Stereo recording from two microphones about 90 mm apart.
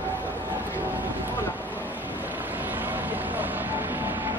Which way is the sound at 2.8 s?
20° right (ahead or behind).